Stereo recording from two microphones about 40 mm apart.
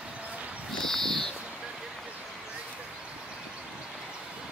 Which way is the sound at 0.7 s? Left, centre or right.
Centre.